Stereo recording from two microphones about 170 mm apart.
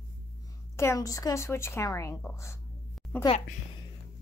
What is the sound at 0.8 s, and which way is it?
Speech, 20° left (ahead or behind).